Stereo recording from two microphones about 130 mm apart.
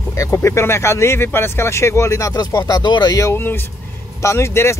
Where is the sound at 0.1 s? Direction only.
25° left (ahead or behind).